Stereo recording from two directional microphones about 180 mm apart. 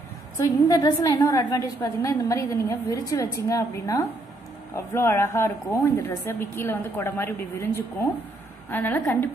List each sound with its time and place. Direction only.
0.4 s a woman's voice: 20° left (ahead or behind)